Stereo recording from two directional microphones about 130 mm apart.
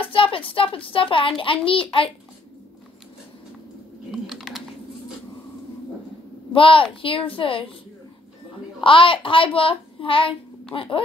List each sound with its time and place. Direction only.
0.0 s a woman's voice: 45° left (ahead or behind)
4.1 s typing: centre (ahead or behind)
6.5 s a child's voice: 40° left (ahead or behind)
8.8 s a child's voice: 40° left (ahead or behind)